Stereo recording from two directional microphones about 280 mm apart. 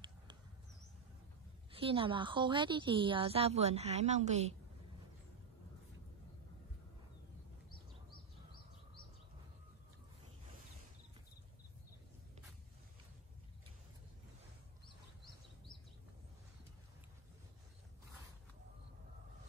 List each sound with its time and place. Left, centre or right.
1.7 s a woman's voice: centre